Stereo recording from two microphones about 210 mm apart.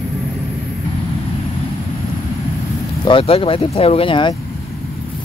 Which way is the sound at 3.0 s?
25° left (ahead or behind).